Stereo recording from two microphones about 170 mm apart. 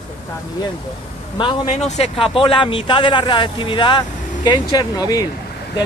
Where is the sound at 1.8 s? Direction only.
40° left (ahead or behind); by 5.2 s 20° left (ahead or behind).